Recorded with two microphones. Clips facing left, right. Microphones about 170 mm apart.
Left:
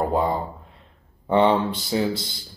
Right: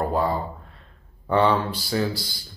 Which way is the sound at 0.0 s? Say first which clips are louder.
Left 1 dB; 20° left (ahead or behind).